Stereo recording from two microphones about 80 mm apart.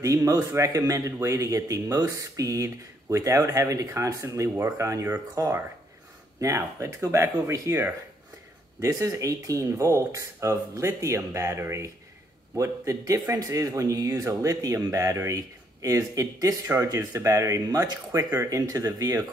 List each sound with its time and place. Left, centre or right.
0.0 s a man's voice: right
4.6 s speech: right
5.3 s speech: right
8.8 s a man's voice: right
16.6 s a man's voice: right
18.1 s a man's voice: right